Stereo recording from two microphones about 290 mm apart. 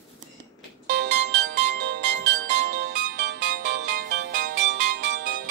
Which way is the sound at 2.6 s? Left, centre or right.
Right.